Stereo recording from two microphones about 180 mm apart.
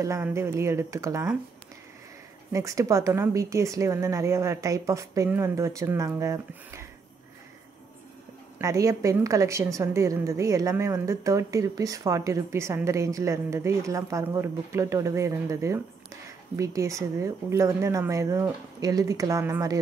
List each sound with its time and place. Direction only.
0.0 s a woman's voice: 15° right (ahead or behind)
2.5 s a woman's voice: 15° right (ahead or behind)
8.5 s a woman's voice: 15° right (ahead or behind)